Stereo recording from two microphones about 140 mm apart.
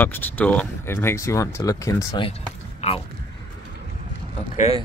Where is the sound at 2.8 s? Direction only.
50° left (ahead or behind).